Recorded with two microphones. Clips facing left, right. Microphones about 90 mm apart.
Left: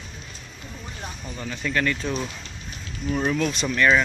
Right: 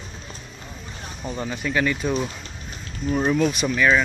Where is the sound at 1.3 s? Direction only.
25° right (ahead or behind).